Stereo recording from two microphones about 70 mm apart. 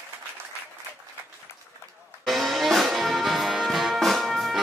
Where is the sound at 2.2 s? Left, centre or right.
Centre.